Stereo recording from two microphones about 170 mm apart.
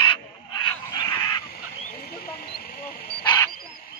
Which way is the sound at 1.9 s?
60° left (ahead or behind).